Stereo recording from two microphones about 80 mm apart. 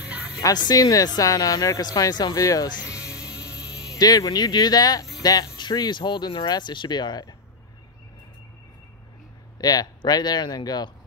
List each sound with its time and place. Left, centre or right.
0.7 s speech: left
2.3 s speech: left
2.8 s music: centre
4.0 s speech: left
5.6 s speech: left
9.6 s speech: left